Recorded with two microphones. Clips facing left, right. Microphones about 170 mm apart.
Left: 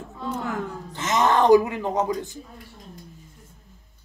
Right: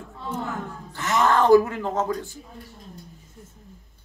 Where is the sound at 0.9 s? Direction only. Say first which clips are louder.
Even; 20° left (ahead or behind).